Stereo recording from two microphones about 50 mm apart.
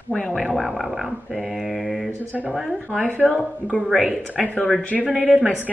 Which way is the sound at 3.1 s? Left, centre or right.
Right.